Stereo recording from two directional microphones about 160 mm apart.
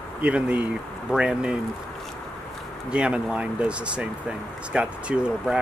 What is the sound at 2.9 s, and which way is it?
Speech, 5° right (ahead or behind).